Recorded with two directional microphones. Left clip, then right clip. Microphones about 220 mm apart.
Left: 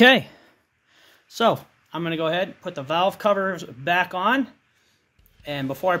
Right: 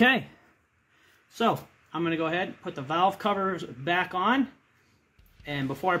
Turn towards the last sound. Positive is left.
turn(degrees=45)  # may be behind; listen again after turning